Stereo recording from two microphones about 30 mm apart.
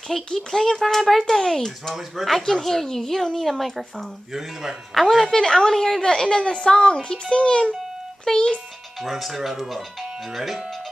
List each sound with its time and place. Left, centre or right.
0.3 s speech: centre
2.0 s speech: centre
2.3 s speech: centre
4.3 s speech: centre
5.2 s speech: centre
6.2 s a woman's voice: left
9.0 s speech: centre